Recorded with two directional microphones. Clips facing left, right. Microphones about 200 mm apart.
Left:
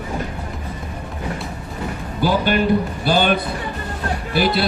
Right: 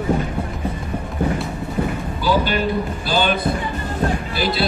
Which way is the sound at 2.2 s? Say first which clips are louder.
Left 2 dB; 55° left (ahead or behind).